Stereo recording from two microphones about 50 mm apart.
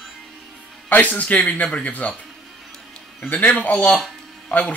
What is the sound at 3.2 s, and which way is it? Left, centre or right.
Speech, left.